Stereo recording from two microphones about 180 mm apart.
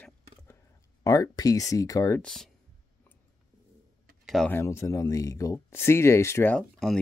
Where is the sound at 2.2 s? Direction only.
5° left (ahead or behind).